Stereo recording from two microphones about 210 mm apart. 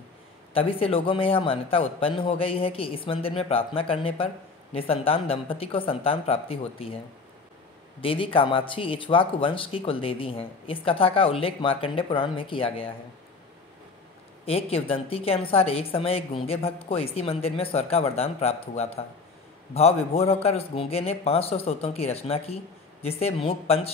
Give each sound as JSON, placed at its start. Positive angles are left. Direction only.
{"t": 0.6, "sound": "speech", "side_deg": 25}
{"t": 8.0, "sound": "speech", "side_deg": 25}
{"t": 14.4, "sound": "speech", "side_deg": 30}